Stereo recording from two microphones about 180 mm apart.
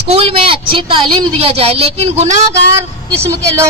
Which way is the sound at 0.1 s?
30° right (ahead or behind).